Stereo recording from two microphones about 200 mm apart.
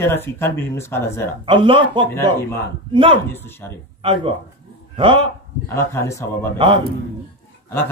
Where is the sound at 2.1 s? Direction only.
10° left (ahead or behind).